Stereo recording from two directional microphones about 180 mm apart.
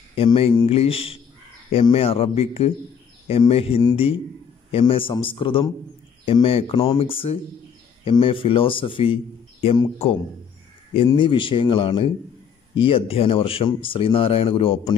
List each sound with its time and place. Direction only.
0.1 s a man's voice: 30° left (ahead or behind)